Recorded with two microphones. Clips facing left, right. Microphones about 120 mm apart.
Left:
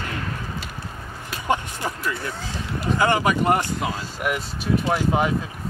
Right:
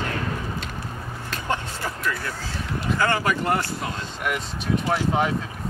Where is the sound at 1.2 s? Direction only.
15° left (ahead or behind).